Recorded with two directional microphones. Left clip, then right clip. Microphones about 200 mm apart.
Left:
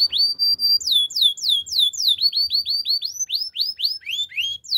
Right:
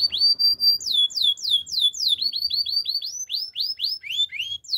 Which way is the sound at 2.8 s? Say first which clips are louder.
Left 3 dB; 15° left (ahead or behind).